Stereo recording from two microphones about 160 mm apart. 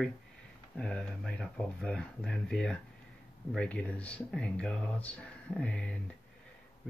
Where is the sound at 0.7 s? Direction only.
5° left (ahead or behind).